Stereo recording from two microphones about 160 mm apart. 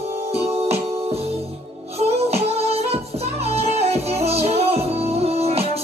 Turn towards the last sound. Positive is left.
turn(degrees=-40)  # may be behind; listen again after turning